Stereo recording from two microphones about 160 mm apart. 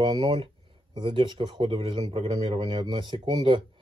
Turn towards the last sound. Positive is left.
turn(degrees=-30)  # may be behind; listen again after turning